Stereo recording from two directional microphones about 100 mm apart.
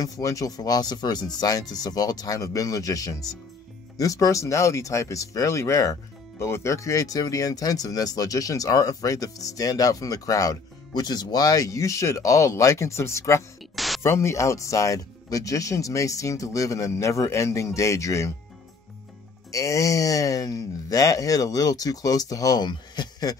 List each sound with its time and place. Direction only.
0.0 s speech: 35° left (ahead or behind)
13.7 s a sound: centre (ahead or behind)
14.0 s speech: 25° left (ahead or behind)
19.5 s speech: 30° left (ahead or behind); by 23.3 s 45° left (ahead or behind)